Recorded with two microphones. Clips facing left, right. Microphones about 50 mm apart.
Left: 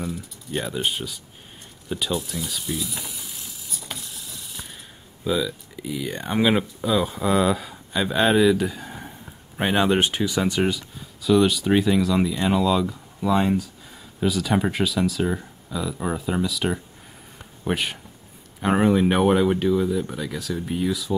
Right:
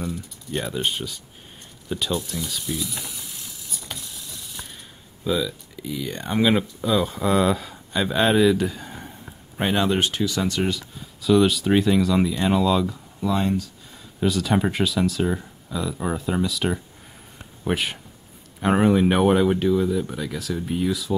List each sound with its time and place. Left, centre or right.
0.0 s speech: centre
5.2 s speech: centre
11.2 s speech: centre